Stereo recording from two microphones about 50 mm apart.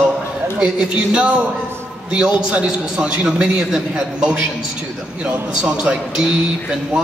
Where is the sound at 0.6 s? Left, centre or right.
Right.